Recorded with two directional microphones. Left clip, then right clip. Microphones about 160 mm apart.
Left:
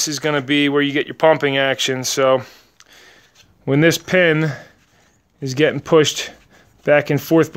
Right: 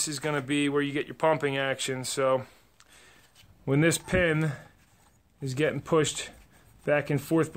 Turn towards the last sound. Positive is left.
turn(degrees=35)  # may be behind; listen again after turning